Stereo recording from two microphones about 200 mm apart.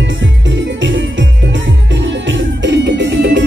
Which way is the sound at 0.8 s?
65° right (ahead or behind).